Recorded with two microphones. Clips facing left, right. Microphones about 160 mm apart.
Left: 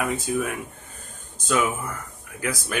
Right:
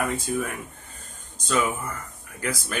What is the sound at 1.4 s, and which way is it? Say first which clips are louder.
Speech: left 1 dB; 10° left (ahead or behind).